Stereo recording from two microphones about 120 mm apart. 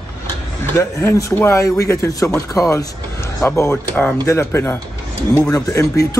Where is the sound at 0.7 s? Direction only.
20° left (ahead or behind).